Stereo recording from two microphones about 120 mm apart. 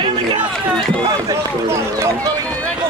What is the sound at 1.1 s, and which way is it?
Run, 30° right (ahead or behind).